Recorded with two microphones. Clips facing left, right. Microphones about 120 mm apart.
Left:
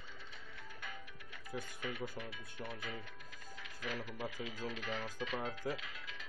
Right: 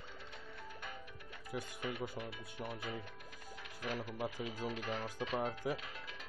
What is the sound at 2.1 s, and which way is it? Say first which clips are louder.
Speech: right 2 dB; 20° right (ahead or behind).